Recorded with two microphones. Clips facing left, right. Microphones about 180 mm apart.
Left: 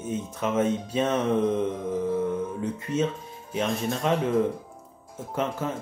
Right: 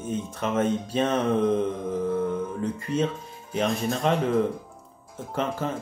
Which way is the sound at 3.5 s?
5° left (ahead or behind).